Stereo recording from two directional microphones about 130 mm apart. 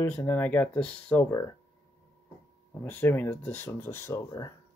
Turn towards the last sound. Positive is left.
turn(degrees=20)  # may be behind; listen again after turning